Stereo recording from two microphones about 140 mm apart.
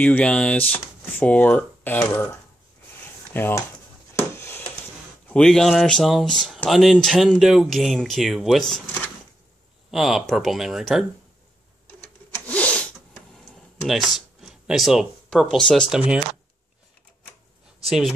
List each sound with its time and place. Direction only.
0.0 s speech: 10° left (ahead or behind)
3.3 s speech: 15° left (ahead or behind)
4.2 s a sound: 15° left (ahead or behind)
5.3 s speech: 5° left (ahead or behind)
9.8 s speech: 5° right (ahead or behind)
12.4 s sneeze: 10° left (ahead or behind)
13.8 s speech: centre (ahead or behind)
17.8 s speech: centre (ahead or behind)